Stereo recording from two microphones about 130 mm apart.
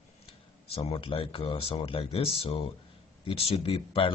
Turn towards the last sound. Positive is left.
turn(degrees=50)  # may be behind; listen again after turning